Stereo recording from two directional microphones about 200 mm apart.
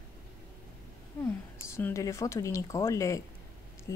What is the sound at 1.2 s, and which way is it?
Speech, 10° left (ahead or behind).